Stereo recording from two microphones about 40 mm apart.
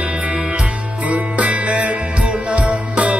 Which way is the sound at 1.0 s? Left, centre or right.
Right.